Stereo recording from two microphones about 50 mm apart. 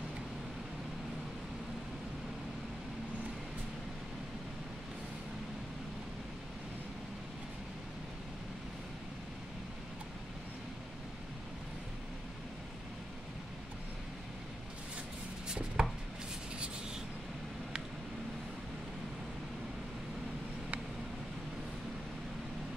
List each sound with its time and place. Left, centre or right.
15.4 s chopping: centre